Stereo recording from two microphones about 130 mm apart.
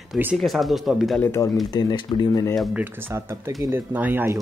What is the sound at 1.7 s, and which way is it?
Speech, 35° left (ahead or behind).